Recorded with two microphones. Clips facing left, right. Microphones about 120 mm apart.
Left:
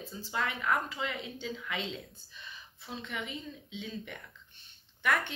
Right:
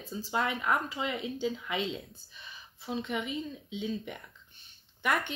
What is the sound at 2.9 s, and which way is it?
Speech, 15° right (ahead or behind).